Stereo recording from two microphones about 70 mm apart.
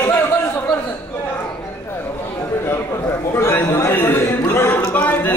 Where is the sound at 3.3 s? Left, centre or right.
Left.